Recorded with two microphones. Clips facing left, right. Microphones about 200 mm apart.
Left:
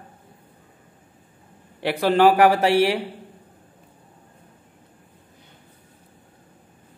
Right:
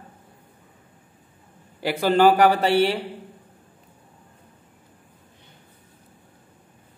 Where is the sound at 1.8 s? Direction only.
Centre (ahead or behind).